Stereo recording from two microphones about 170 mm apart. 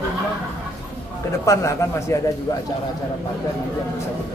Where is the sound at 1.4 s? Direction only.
20° left (ahead or behind).